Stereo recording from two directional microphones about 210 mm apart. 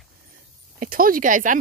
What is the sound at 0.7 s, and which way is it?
Speech, 40° right (ahead or behind).